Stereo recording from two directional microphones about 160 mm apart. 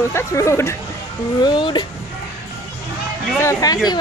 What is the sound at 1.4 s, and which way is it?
Speech, 30° left (ahead or behind).